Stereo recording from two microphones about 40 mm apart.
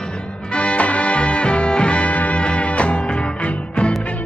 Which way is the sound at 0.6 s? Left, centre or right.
Left.